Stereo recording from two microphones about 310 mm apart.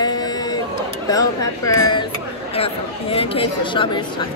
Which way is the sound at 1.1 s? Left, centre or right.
Centre.